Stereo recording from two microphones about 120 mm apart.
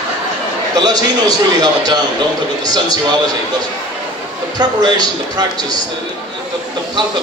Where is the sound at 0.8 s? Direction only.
35° right (ahead or behind).